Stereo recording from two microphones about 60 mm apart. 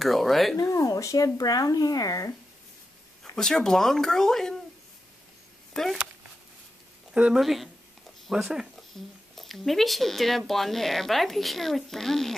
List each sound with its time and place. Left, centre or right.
0.0 s speech: centre
0.6 s speech: left
0.8 s speech: left
3.3 s speech: centre
5.7 s speech: centre
7.3 s speech: centre